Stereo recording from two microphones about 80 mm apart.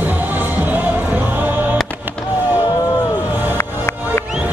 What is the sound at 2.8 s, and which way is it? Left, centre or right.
Music, left.